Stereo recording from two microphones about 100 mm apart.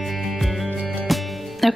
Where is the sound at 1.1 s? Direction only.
Centre (ahead or behind).